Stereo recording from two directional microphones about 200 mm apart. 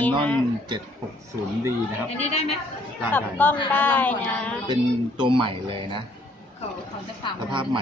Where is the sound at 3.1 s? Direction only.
10° left (ahead or behind).